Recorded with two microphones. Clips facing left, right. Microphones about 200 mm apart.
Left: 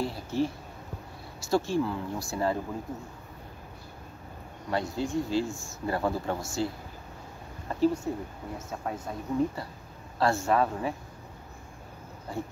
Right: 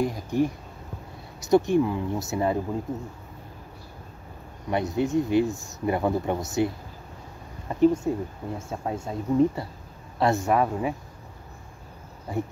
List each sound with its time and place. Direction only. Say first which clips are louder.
0.0 s speech: right 5 dB; 15° right (ahead or behind)
4.6 s speech: right 5 dB; 20° right (ahead or behind)
8.1 s speech: right 6 dB; 20° right (ahead or behind)
12.3 s speech: right 6 dB; 20° right (ahead or behind)